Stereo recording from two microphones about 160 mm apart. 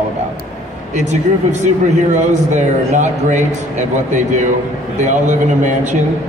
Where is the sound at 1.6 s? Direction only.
50° right (ahead or behind).